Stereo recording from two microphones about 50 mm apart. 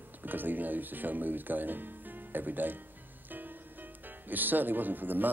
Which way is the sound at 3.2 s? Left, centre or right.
Right.